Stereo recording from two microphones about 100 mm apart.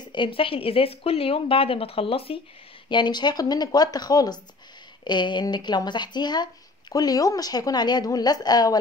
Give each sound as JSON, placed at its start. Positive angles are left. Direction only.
{"t": 0.0, "sound": "speech", "side_deg": 50}
{"t": 2.9, "sound": "speech", "side_deg": 50}